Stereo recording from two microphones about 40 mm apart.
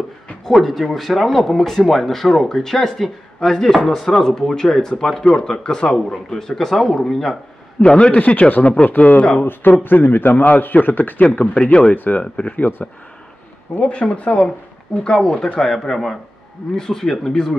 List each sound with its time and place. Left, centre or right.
0.5 s speech: centre
7.8 s speech: left
8.5 s speech: left
9.4 s a man's voice: left
10.3 s speech: left
10.6 s speech: left
11.2 s speech: left
11.9 s speech: left
13.7 s speech: left
15.0 s speech: centre
15.6 s speech: centre